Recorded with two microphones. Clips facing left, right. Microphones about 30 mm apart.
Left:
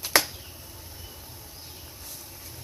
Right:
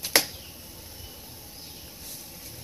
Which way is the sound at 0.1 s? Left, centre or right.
Right.